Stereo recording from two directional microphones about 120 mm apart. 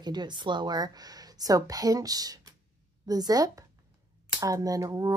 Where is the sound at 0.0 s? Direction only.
40° right (ahead or behind).